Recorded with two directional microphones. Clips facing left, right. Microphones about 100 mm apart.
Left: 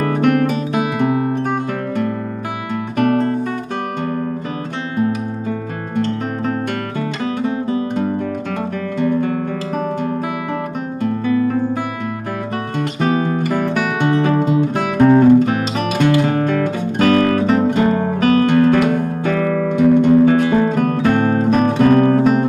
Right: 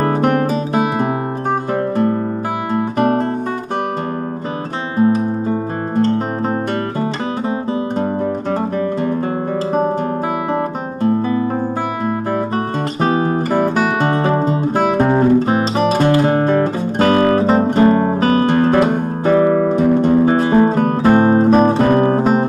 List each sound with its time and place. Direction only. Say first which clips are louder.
0.0 s music: even; 35° right (ahead or behind)
5.9 s music: right 3 dB; 35° right (ahead or behind)
8.0 s guitar: right 2 dB; 35° right (ahead or behind)
9.7 s music: right 8 dB; 35° right (ahead or behind)
10.5 s guitar: right 3 dB; 35° right (ahead or behind)
13.0 s music: right 1 dB; 35° right (ahead or behind)